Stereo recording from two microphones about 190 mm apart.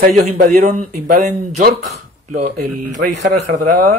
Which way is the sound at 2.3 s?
45° right (ahead or behind).